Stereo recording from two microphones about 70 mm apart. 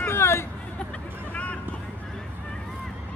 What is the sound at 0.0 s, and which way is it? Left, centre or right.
Hubbub, left.